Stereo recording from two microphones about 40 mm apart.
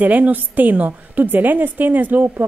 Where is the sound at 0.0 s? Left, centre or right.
Right.